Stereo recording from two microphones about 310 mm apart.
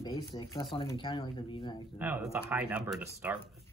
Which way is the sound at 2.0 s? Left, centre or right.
Centre.